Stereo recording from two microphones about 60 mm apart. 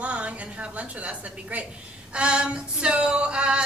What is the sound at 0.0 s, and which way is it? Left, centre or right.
A woman's voice, right.